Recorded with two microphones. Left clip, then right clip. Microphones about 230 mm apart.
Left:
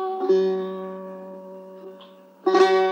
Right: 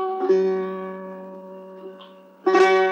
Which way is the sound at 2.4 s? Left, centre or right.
Left.